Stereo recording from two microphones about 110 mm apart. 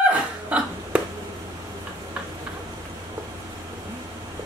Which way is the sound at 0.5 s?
10° right (ahead or behind).